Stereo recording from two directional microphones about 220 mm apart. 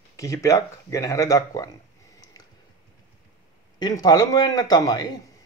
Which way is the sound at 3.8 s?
15° left (ahead or behind).